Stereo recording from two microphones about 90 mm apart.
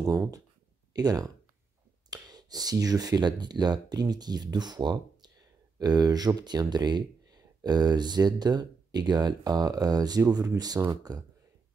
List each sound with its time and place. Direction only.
0.9 s speech: 45° right (ahead or behind)